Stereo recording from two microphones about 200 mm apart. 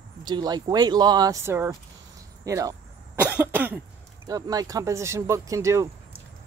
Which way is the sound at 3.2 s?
10° right (ahead or behind).